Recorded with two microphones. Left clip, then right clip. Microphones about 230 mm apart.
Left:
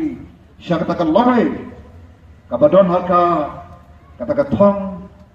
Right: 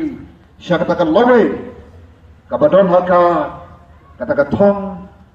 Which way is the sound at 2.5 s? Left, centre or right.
Centre.